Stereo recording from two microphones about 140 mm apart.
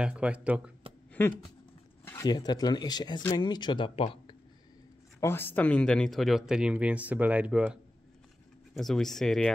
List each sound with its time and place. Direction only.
0.0 s speech: 10° right (ahead or behind)
1.2 s a sound: 15° left (ahead or behind)
2.2 s speech: 30° left (ahead or behind)
5.2 s speech: 15° left (ahead or behind); by 7.8 s 10° right (ahead or behind)
8.7 s speech: centre (ahead or behind)